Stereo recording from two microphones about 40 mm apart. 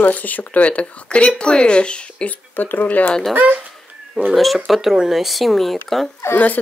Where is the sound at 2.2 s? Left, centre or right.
Left.